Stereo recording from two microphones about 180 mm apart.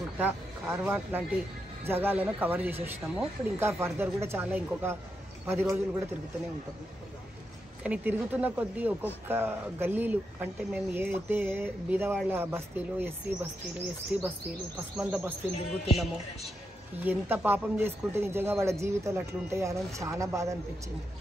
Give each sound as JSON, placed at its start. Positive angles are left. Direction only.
{"t": 0.2, "sound": "speech", "side_deg": -10}
{"t": 7.8, "sound": "speech", "side_deg": -10}
{"t": 17.0, "sound": "speech", "side_deg": -10}